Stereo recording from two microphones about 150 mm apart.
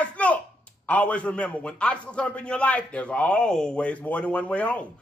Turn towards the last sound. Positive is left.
turn(degrees=10)  # may be behind; listen again after turning